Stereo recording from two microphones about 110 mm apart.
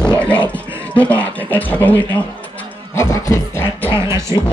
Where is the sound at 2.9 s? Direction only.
25° left (ahead or behind).